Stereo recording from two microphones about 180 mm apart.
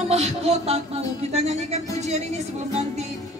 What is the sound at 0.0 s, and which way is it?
Music, 40° right (ahead or behind).